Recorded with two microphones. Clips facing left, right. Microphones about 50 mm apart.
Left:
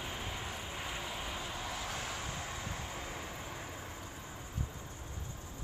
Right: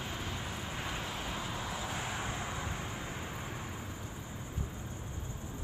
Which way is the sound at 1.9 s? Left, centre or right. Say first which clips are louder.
Right 3 dB; centre.